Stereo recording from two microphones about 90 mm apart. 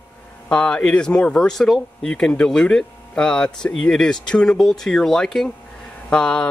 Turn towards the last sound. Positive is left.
turn(degrees=10)  # may be behind; listen again after turning